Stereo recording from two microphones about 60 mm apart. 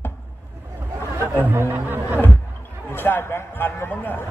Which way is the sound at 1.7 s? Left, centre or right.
Right.